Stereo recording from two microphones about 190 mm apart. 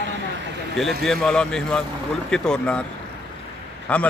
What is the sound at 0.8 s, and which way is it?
A man's voice, centre (ahead or behind).